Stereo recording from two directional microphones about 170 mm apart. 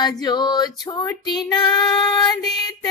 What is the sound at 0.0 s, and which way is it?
Female singing, 25° left (ahead or behind).